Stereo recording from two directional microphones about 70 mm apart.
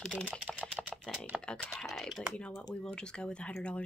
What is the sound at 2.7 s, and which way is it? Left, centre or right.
Speech, centre.